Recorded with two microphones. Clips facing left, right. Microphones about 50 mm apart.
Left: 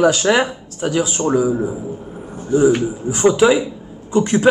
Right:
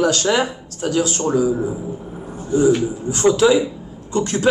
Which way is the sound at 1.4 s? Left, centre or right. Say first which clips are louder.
Left 1 dB; centre.